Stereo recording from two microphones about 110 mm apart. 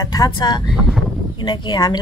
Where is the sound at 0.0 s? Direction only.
35° left (ahead or behind).